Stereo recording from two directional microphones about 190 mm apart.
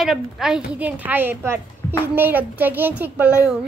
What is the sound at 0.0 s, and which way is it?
A child's voice, centre (ahead or behind).